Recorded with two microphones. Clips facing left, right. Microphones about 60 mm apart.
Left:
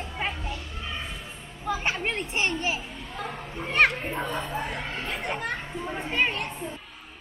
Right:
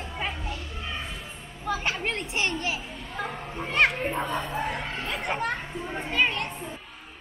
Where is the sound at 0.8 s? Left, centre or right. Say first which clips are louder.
Right 1 dB; centre.